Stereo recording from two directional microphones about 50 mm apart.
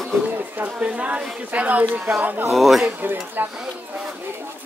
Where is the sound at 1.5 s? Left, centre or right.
Right.